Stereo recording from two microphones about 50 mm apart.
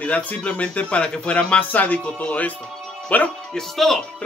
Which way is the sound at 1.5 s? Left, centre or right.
Left.